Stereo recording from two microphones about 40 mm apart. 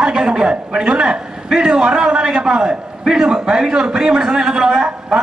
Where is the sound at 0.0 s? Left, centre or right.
Centre.